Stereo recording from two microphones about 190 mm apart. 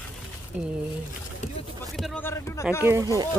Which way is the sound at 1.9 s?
Centre (ahead or behind).